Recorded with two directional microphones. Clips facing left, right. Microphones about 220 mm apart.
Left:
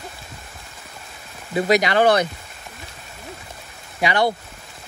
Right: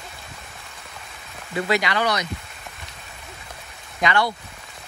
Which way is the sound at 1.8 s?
50° left (ahead or behind).